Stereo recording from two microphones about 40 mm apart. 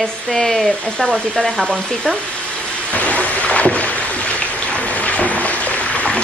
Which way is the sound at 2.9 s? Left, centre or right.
Left.